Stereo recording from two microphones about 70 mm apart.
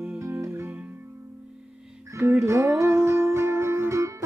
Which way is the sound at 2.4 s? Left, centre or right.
Right.